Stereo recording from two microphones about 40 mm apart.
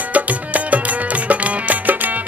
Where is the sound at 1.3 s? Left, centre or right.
Right.